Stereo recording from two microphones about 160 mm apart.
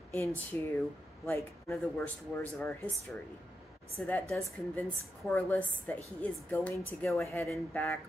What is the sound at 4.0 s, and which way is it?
Speech, 5° left (ahead or behind).